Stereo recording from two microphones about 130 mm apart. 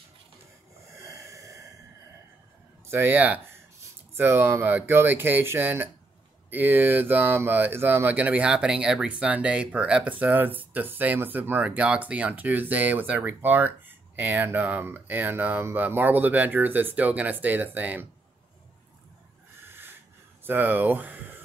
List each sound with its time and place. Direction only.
1.0 s snort: 25° right (ahead or behind)
2.9 s speech: 15° right (ahead or behind)
19.7 s rub: 15° right (ahead or behind)
20.4 s speech: 15° right (ahead or behind)